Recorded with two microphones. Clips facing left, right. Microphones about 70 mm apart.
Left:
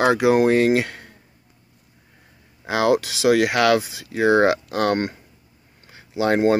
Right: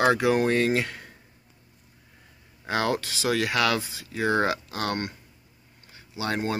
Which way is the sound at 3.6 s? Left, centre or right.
Left.